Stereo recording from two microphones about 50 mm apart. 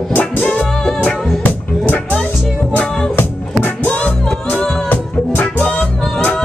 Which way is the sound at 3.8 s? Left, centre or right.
Left.